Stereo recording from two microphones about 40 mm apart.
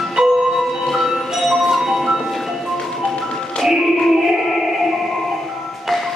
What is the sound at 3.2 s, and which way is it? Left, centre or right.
Music, centre.